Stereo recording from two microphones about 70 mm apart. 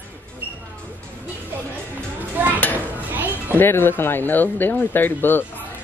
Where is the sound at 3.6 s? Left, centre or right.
Left.